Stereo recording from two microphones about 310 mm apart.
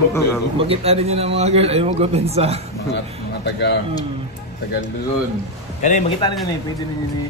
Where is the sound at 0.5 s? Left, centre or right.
Centre.